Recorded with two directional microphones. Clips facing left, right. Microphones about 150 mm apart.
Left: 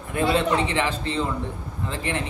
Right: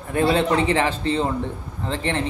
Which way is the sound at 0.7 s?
35° right (ahead or behind).